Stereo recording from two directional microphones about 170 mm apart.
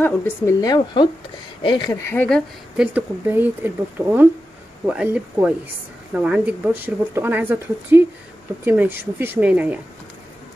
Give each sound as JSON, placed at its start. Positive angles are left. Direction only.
{"t": 0.0, "sound": "a woman's voice", "side_deg": 15}
{"t": 2.0, "sound": "speech", "side_deg": 10}
{"t": 2.8, "sound": "speech", "side_deg": -10}